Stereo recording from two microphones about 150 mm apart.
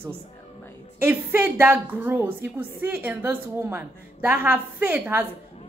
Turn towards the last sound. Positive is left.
turn(degrees=-10)  # may be behind; listen again after turning